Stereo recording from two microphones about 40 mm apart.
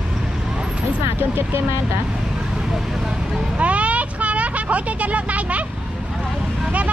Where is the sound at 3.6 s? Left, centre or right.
Right.